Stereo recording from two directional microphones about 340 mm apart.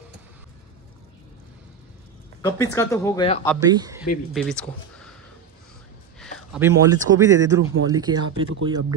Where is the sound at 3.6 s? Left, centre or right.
Centre.